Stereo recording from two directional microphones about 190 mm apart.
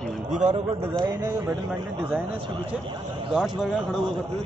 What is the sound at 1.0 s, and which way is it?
Speech, 15° right (ahead or behind).